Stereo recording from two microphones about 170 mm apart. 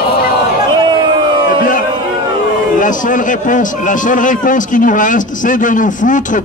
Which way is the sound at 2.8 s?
50° left (ahead or behind).